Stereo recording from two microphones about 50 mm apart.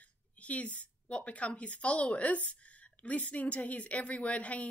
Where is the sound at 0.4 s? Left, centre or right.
Left.